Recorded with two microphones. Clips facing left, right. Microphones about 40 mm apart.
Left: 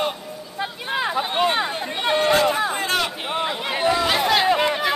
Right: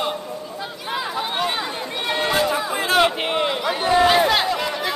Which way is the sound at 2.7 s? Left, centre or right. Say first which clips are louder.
Right 2 dB; centre.